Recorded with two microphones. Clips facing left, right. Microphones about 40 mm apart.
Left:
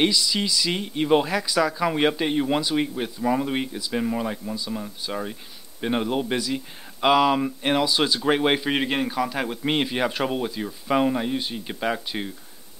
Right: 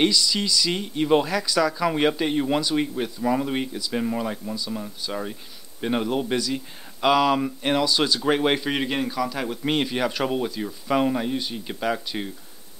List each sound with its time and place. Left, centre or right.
0.0 s a man's voice: centre
4.6 s speech: centre